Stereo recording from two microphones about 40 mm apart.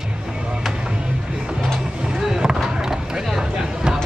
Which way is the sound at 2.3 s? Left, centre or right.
Centre.